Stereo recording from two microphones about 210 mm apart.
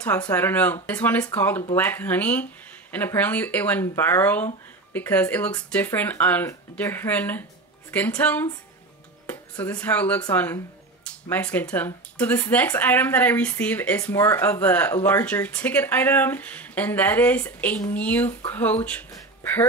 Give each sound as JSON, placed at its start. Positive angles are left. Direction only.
{"t": 0.3, "sound": "speech", "side_deg": 10}